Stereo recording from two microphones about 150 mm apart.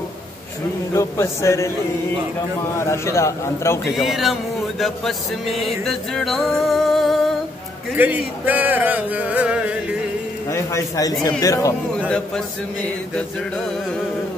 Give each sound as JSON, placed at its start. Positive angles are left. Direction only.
{"t": 0.9, "sound": "a man's voice", "side_deg": 20}
{"t": 2.8, "sound": "a man's voice", "side_deg": 20}
{"t": 3.9, "sound": "music", "side_deg": 0}
{"t": 7.9, "sound": "speech", "side_deg": -10}
{"t": 10.5, "sound": "a man's voice", "side_deg": 20}